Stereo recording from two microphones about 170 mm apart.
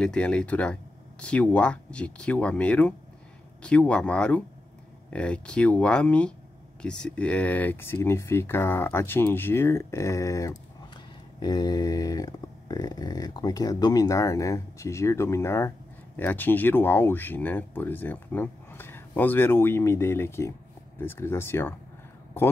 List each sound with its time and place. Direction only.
0.0 s speech: 5° left (ahead or behind)